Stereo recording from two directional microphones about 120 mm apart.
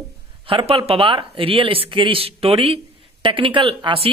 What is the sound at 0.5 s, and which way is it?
Speech, 50° right (ahead or behind).